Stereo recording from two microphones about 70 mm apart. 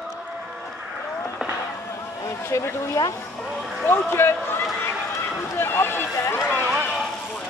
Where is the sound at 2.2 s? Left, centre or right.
Left.